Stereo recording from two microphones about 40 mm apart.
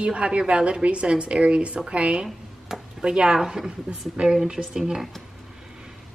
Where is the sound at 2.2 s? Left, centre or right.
Centre.